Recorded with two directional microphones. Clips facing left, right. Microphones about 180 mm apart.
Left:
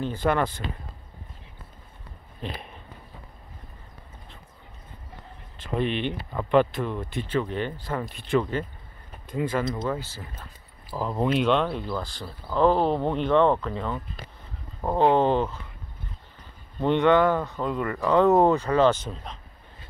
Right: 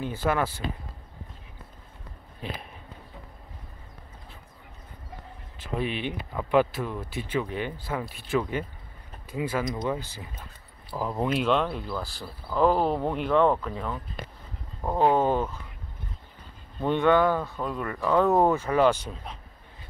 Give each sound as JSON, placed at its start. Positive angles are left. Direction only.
{"t": 0.0, "sound": "speech", "side_deg": -5}
{"t": 2.4, "sound": "speech", "side_deg": -10}
{"t": 5.6, "sound": "speech", "side_deg": -5}
{"t": 15.0, "sound": "speech", "side_deg": -5}
{"t": 16.8, "sound": "speech", "side_deg": -5}